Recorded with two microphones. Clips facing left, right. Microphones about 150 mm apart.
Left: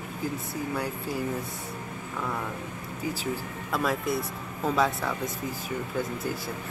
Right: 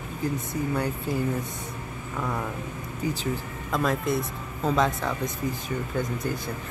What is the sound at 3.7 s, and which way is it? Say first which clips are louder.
Speech: right 2 dB; 5° left (ahead or behind).